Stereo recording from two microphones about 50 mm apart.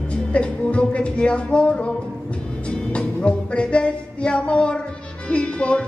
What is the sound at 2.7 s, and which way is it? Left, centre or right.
Music, centre.